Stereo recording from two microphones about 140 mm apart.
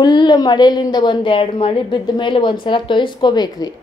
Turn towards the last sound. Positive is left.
turn(degrees=30)  # may be behind; listen again after turning